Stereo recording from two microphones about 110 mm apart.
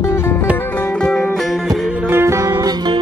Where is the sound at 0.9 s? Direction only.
10° left (ahead or behind).